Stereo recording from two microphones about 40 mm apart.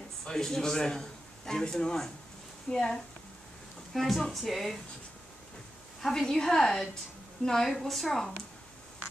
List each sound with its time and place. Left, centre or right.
0.2 s a man's voice: centre
3.9 s speech: centre
6.0 s a woman's voice: centre